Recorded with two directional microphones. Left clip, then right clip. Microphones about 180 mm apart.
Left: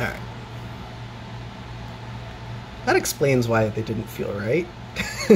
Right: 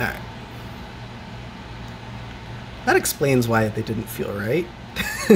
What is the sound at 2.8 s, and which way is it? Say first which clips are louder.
Speech: right 1 dB; 10° right (ahead or behind).